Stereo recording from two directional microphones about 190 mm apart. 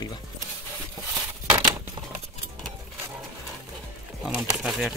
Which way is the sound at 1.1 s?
20° right (ahead or behind).